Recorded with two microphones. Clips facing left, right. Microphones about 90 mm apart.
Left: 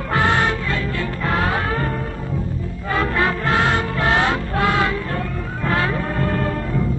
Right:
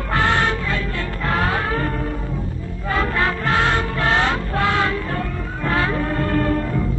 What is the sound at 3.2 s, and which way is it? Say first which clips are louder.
Music: left 1 dB; 15° left (ahead or behind).